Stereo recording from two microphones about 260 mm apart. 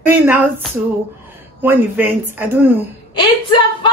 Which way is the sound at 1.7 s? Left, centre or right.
Centre.